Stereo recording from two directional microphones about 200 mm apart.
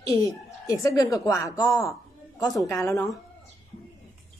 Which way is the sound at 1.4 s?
15° left (ahead or behind).